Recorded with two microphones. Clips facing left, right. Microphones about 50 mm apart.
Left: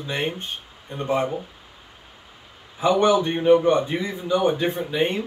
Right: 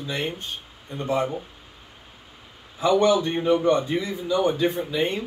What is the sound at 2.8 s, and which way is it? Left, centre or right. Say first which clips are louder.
A man's voice: left 1 dB; left.